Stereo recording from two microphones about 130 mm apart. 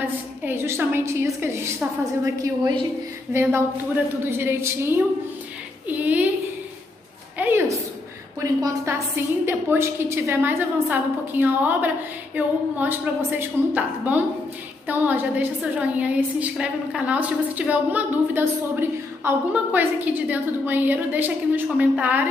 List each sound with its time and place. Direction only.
0.0 s a woman's voice: 15° right (ahead or behind)
7.3 s a sound: 15° right (ahead or behind)
8.4 s a woman's voice: 25° right (ahead or behind)